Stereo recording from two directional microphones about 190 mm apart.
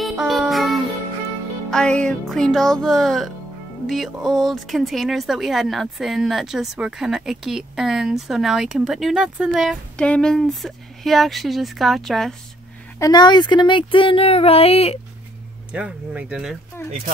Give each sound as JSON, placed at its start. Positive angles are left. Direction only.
{"t": 0.0, "sound": "music", "side_deg": 0}
{"t": 1.7, "sound": "a woman's voice", "side_deg": 5}
{"t": 13.0, "sound": "speech", "side_deg": 20}
{"t": 15.7, "sound": "speech", "side_deg": -5}
{"t": 16.8, "sound": "speech", "side_deg": 10}